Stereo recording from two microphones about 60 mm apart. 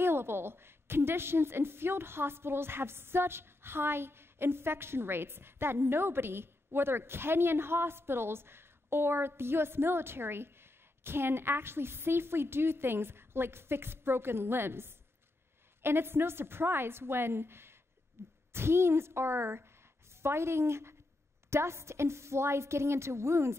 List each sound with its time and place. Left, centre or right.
0.0 s a woman's voice: right
18.2 s a sound: right
18.5 s a woman's voice: right